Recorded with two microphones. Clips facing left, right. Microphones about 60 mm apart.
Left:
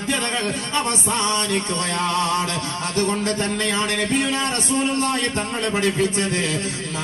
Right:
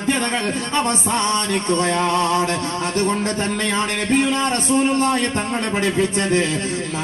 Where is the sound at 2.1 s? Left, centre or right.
Right.